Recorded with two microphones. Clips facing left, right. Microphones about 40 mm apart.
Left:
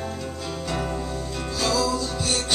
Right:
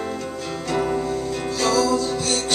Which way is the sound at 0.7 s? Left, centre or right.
Centre.